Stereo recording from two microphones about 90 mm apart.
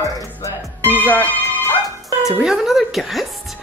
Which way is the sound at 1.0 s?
30° left (ahead or behind).